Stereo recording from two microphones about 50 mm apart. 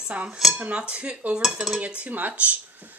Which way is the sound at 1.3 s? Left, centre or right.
Centre.